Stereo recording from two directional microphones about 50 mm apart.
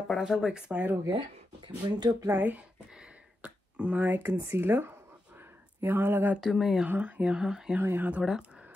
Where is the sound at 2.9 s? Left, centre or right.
Right.